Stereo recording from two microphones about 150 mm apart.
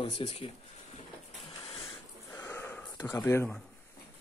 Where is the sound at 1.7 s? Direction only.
40° left (ahead or behind).